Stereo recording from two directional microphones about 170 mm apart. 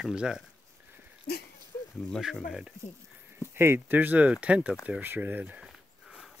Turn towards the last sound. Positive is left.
turn(degrees=-5)  # may be behind; listen again after turning